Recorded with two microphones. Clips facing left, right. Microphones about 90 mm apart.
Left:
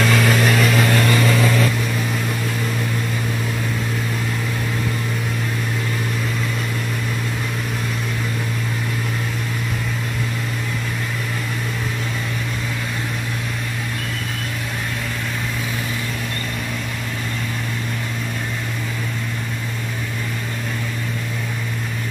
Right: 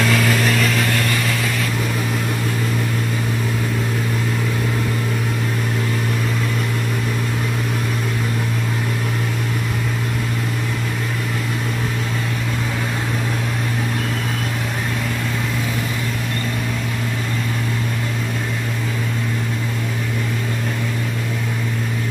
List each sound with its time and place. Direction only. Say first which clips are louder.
0.0 s vehicle: left 1 dB; 5° left (ahead or behind)
0.7 s vehicle: left 3 dB; 25° left (ahead or behind)